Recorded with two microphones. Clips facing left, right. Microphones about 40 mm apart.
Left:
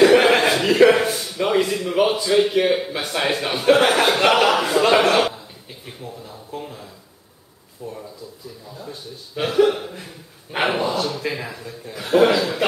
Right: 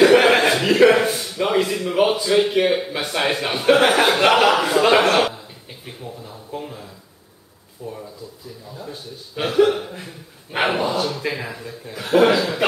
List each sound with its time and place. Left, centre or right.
0.0 s speech: centre